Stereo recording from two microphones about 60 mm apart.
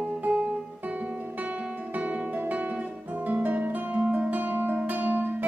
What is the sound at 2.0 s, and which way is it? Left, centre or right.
Music, right.